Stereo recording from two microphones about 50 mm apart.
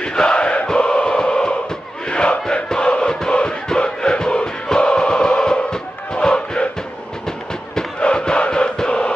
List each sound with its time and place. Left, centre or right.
0.0 s a sound: centre
2.0 s music: centre
7.7 s music: centre